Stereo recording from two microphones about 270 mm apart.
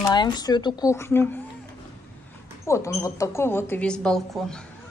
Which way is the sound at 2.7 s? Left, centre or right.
Centre.